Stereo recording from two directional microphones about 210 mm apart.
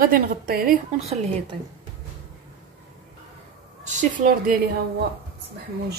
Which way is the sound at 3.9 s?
35° right (ahead or behind).